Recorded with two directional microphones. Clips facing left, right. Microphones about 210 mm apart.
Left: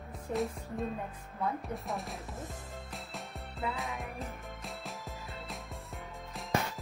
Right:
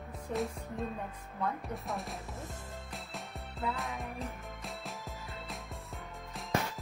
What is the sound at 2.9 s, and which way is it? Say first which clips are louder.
Music: even; centre (ahead or behind).